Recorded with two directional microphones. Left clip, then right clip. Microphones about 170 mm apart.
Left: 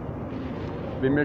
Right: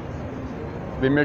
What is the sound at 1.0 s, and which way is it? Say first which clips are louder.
Speech: right 3 dB; 90° right.